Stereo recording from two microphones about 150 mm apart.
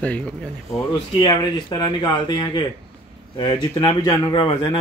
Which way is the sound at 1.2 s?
30° left (ahead or behind).